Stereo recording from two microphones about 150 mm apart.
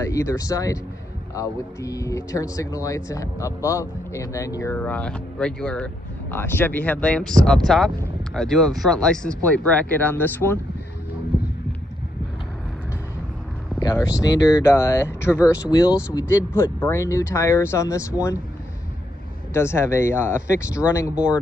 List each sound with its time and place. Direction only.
0.0 s speech: 20° left (ahead or behind)
13.9 s speech: 25° left (ahead or behind)
19.5 s speech: 15° left (ahead or behind)
21.1 s speech: 10° right (ahead or behind)